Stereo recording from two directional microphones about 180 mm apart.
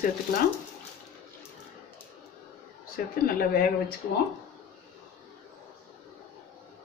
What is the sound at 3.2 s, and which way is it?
Speech, 55° left (ahead or behind).